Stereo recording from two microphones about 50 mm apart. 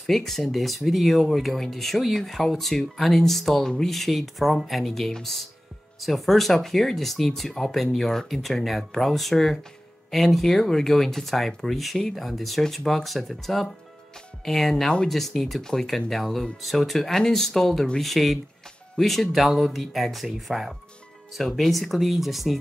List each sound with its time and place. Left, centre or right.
0.0 s speech: centre